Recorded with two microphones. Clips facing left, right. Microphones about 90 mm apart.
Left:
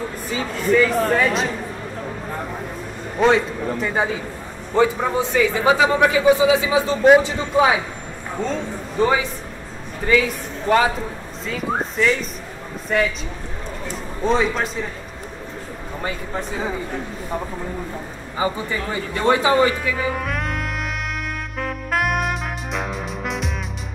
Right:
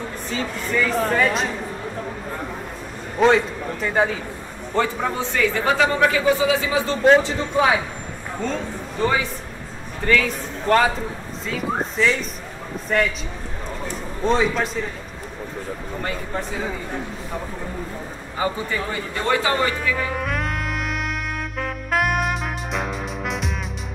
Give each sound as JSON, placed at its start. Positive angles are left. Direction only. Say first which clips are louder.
{"t": 0.3, "sound": "speech", "louder": "left 6 dB", "side_deg": 5}
{"t": 3.2, "sound": "a man's voice", "louder": "even", "side_deg": 0}
{"t": 10.0, "sound": "a man's voice", "louder": "left 2 dB", "side_deg": 10}
{"t": 14.2, "sound": "speech", "louder": "even", "side_deg": 0}
{"t": 18.4, "sound": "speech", "louder": "left 1 dB", "side_deg": 15}
{"t": 21.5, "sound": "saxophone", "louder": "even", "side_deg": 0}